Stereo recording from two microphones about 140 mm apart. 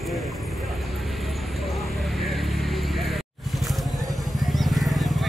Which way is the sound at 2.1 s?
Centre (ahead or behind).